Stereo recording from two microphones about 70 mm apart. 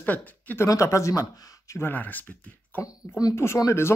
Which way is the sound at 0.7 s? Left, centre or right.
Left.